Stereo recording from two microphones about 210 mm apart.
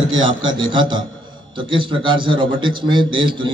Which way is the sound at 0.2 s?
20° right (ahead or behind).